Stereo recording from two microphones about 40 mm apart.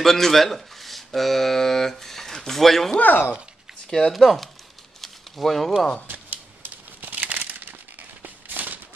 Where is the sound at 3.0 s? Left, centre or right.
Left.